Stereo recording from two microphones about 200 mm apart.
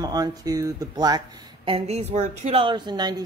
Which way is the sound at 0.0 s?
20° right (ahead or behind).